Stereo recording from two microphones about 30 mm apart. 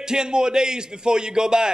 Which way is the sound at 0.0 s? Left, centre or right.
Right.